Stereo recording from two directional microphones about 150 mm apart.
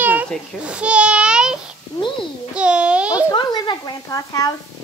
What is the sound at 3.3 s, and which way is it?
Speech, 30° left (ahead or behind).